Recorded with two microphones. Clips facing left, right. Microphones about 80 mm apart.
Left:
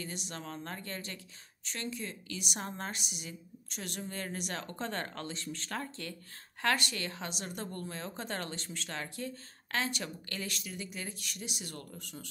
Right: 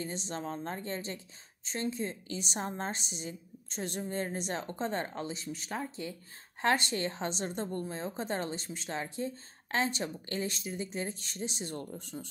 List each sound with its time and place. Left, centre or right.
0.0 s a woman's voice: right